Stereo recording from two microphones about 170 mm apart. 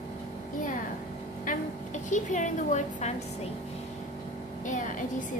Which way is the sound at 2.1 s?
45° left (ahead or behind).